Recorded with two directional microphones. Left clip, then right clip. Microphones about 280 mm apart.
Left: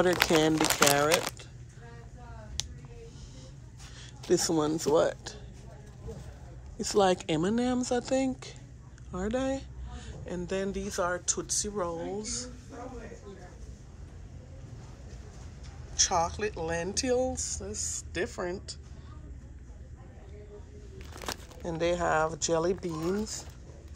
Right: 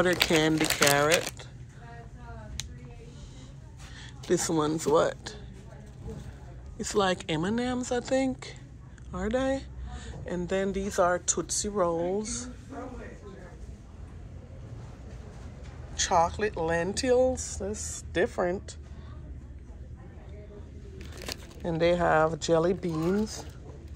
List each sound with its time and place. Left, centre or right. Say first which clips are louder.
0.0 s speech: even; centre
4.0 s speech: left 1 dB; centre
6.8 s speech: left 2 dB; centre
16.0 s speech: right 3 dB; centre
21.6 s speech: right 4 dB; centre